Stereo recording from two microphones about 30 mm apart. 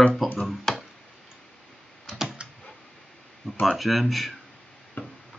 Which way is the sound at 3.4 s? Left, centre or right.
Centre.